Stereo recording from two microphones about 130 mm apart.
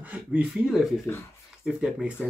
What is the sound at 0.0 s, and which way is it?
Speech, 10° right (ahead or behind).